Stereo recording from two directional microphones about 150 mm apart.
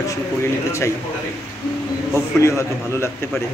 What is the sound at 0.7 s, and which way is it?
Speech, 20° left (ahead or behind).